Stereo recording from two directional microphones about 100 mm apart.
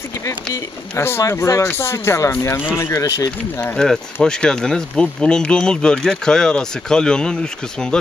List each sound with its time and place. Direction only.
0.2 s speech: 30° left (ahead or behind)
3.7 s speech: 5° left (ahead or behind)